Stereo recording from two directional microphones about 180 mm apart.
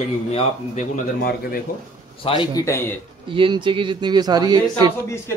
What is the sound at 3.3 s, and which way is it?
Speech, 25° right (ahead or behind).